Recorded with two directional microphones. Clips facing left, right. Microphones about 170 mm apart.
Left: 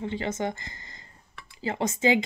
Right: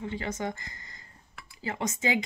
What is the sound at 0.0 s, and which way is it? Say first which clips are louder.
Speech: left 4 dB; 25° left (ahead or behind).